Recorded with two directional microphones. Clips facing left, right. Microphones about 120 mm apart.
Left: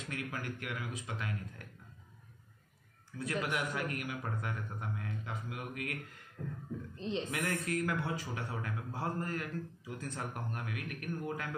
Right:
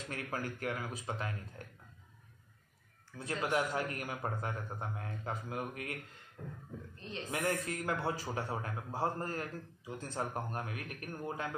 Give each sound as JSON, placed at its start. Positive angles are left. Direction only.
{"t": 0.1, "sound": "a man's voice", "side_deg": -35}
{"t": 3.2, "sound": "a man's voice", "side_deg": -25}
{"t": 7.0, "sound": "speech", "side_deg": 20}
{"t": 7.2, "sound": "speech", "side_deg": -25}